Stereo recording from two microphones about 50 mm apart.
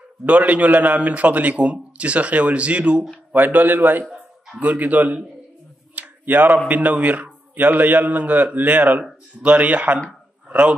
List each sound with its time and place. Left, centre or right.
0.3 s a man's voice: right
3.3 s a man's voice: right
5.9 s a sound: right
6.7 s a man's voice: right